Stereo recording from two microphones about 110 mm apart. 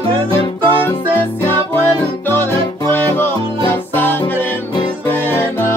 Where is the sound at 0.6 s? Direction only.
20° left (ahead or behind).